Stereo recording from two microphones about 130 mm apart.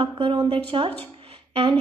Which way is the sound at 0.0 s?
40° right (ahead or behind).